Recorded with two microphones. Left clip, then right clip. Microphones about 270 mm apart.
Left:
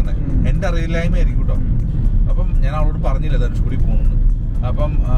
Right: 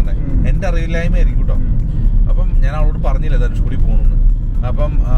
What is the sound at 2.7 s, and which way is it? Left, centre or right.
Speech, left.